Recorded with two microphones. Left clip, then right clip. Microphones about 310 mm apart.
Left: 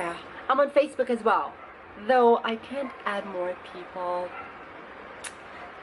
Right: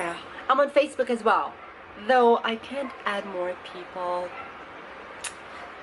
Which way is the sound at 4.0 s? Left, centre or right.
Centre.